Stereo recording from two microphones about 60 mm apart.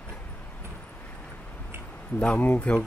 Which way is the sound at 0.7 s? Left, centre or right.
Left.